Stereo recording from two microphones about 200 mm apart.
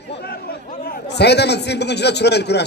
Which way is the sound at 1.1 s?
55° left (ahead or behind).